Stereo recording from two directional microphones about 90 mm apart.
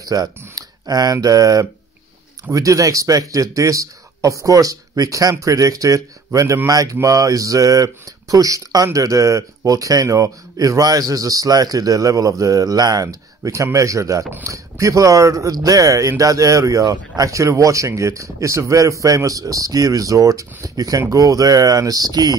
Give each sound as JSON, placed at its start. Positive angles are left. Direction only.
{"t": 0.0, "sound": "speech", "side_deg": -45}